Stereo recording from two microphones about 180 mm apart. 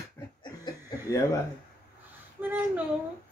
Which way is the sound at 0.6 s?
15° left (ahead or behind).